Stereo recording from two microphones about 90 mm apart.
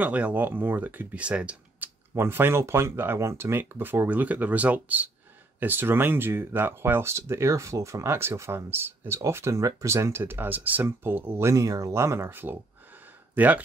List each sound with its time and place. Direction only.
0.0 s speech: 15° right (ahead or behind)
2.1 s speech: 25° right (ahead or behind)